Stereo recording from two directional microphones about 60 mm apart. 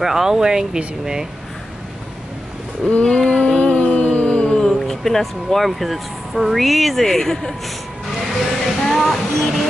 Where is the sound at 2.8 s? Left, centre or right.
Centre.